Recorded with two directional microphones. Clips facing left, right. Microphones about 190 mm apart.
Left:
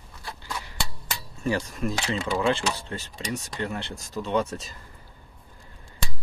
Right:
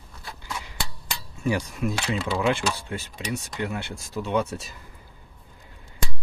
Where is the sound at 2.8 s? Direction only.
10° right (ahead or behind).